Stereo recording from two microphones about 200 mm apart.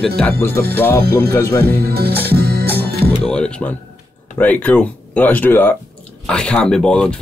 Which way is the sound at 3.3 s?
5° left (ahead or behind).